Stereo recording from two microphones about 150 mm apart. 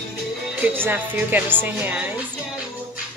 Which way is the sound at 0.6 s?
10° right (ahead or behind).